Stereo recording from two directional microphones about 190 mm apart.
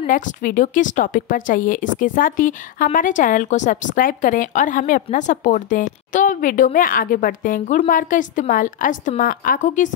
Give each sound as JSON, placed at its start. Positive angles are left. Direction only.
{"t": 0.0, "sound": "a woman's voice", "side_deg": 45}